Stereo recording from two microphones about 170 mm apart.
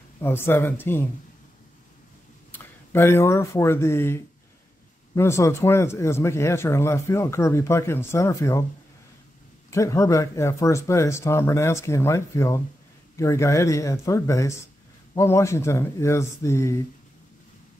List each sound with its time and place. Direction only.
0.2 s speech: 15° left (ahead or behind)
2.5 s speech: 15° left (ahead or behind)
9.7 s speech: 15° left (ahead or behind)